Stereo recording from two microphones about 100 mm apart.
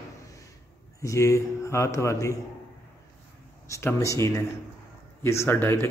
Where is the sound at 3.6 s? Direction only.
30° left (ahead or behind).